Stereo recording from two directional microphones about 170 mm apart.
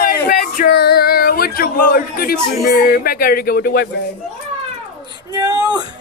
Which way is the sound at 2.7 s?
60° left (ahead or behind).